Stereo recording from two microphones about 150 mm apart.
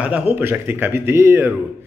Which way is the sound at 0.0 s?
10° right (ahead or behind).